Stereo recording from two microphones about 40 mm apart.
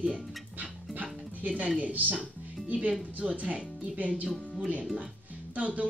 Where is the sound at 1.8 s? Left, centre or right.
Right.